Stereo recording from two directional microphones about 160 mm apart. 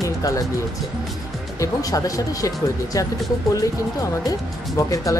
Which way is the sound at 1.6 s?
20° left (ahead or behind).